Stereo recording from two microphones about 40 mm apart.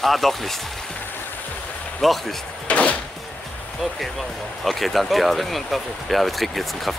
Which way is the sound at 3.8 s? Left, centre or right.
Centre.